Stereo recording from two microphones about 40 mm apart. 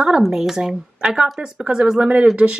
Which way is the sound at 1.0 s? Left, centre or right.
Right.